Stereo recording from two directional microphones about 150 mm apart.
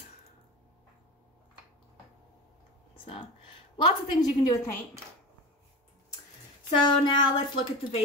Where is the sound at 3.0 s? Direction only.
40° left (ahead or behind).